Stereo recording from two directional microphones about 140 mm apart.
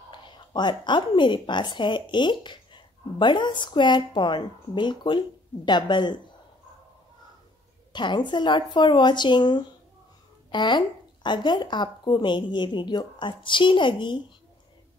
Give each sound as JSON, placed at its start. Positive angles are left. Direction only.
{"t": 0.1, "sound": "a woman's voice", "side_deg": 35}
{"t": 7.9, "sound": "a woman's voice", "side_deg": 35}